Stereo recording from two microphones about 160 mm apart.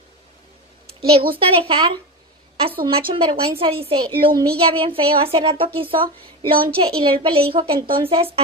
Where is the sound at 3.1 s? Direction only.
35° right (ahead or behind).